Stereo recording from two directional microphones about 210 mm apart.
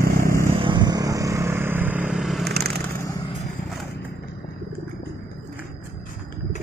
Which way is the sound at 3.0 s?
20° left (ahead or behind).